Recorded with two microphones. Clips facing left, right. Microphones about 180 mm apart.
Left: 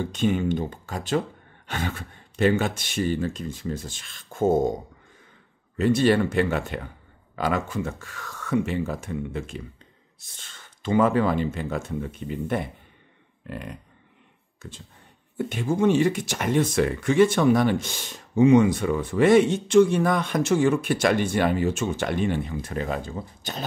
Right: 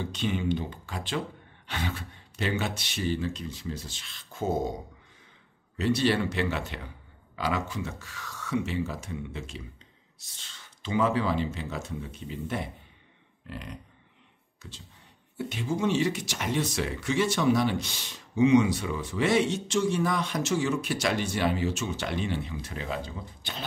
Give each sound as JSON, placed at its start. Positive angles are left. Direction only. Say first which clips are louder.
{"t": 0.0, "sound": "speech", "louder": "left 6 dB", "side_deg": 50}
{"t": 5.8, "sound": "speech", "louder": "left 6 dB", "side_deg": 50}